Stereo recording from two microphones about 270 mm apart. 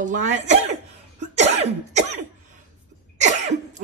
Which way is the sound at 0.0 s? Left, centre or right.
Right.